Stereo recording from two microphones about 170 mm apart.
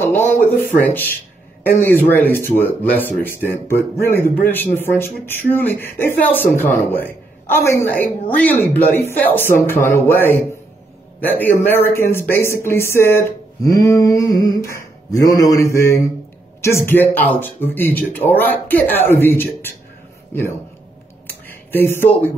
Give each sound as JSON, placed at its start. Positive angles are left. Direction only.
{"t": 0.0, "sound": "a woman's voice", "side_deg": 15}
{"t": 21.7, "sound": "a woman's voice", "side_deg": 15}